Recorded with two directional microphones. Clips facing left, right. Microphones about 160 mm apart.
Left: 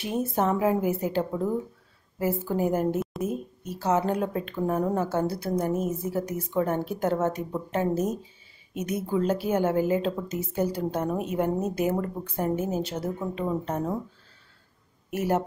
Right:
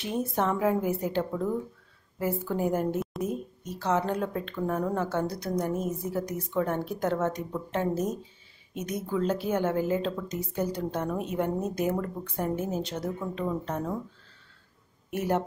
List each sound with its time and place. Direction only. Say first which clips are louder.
0.0 s a woman's voice: left 2 dB; 5° left (ahead or behind)
13.4 s speech: left 2 dB; 20° left (ahead or behind)
15.0 s speech: left 2 dB; 5° left (ahead or behind)